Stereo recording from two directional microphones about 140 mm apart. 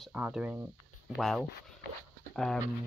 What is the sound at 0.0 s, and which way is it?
Speech, 5° right (ahead or behind).